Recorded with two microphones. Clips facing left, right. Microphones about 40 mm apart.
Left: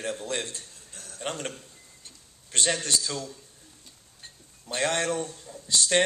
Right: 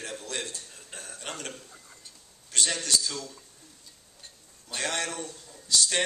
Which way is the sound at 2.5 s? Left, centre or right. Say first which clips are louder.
Left 1 dB; left.